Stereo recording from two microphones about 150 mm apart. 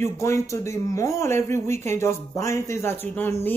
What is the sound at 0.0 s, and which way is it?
Speech, 20° left (ahead or behind).